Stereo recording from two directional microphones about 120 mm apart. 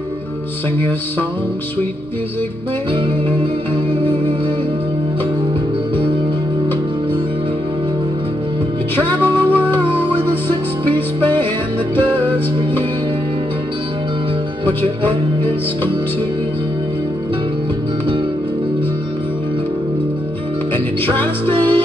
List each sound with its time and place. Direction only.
8.9 s music: 15° left (ahead or behind)
21.5 s music: 45° right (ahead or behind)